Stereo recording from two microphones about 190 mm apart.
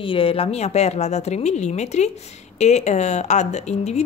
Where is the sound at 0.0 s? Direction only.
30° left (ahead or behind).